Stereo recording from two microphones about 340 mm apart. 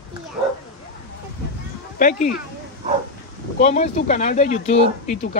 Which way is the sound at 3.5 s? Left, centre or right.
Centre.